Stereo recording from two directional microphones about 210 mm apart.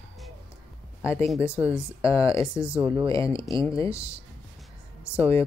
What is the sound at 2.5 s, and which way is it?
Music, 5° right (ahead or behind).